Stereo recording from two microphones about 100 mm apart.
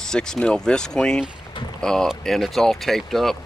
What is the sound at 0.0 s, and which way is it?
Speech, 5° left (ahead or behind).